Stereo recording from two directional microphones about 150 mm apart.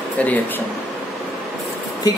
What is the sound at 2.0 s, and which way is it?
Speech, 25° left (ahead or behind).